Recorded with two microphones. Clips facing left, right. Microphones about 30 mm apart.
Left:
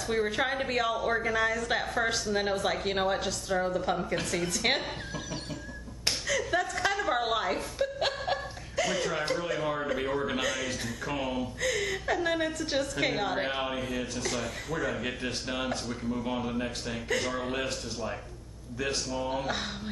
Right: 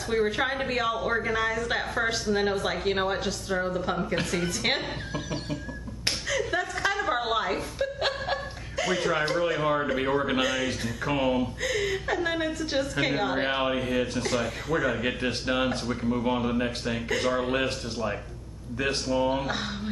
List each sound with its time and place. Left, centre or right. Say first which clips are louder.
0.1 s a woman's voice: right 3 dB; centre
11.6 s a woman's voice: right 2 dB; centre